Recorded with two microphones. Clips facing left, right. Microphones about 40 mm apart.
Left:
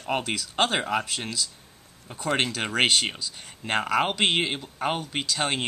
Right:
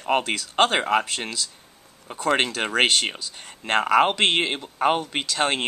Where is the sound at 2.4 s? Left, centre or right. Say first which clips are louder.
Right 3 dB; centre.